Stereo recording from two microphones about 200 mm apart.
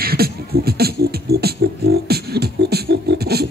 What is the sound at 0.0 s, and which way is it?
Beatboxing, 50° right (ahead or behind).